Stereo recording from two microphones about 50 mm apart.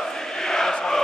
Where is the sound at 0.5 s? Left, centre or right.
Centre.